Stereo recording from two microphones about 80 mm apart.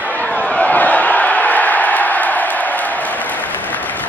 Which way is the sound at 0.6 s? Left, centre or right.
Centre.